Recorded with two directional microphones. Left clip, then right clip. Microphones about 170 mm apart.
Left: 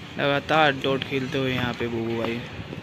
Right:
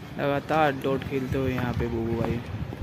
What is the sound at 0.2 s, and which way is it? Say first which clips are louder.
Speech: left 3 dB; centre (ahead or behind).